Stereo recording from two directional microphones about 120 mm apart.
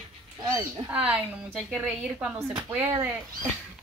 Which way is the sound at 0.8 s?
10° right (ahead or behind).